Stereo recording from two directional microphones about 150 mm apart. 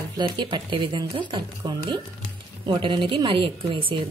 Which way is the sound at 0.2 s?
30° right (ahead or behind).